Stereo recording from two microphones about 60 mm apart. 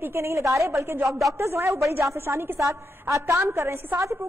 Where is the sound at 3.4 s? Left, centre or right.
Right.